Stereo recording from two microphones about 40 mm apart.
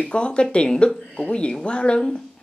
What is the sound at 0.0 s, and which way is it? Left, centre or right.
A woman's voice, left.